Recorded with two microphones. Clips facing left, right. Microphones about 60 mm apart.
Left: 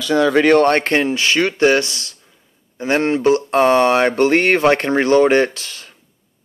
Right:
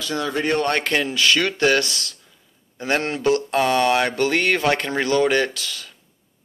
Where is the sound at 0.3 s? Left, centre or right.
Left.